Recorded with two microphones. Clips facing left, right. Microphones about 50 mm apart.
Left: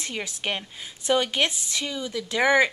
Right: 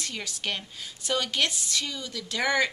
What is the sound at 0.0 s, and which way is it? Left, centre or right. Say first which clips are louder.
A woman's voice: left 3 dB; left.